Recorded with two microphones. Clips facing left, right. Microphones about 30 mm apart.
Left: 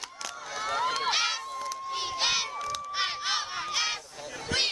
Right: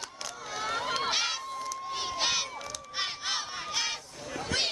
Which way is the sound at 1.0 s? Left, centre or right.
Centre.